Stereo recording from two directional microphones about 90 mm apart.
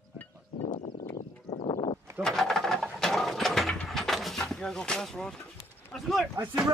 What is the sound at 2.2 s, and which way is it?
Mechanisms, 5° left (ahead or behind).